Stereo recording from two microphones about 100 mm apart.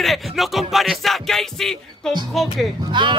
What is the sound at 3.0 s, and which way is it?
Speech, 50° right (ahead or behind).